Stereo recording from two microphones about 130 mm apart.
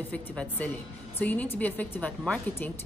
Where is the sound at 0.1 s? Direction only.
10° left (ahead or behind).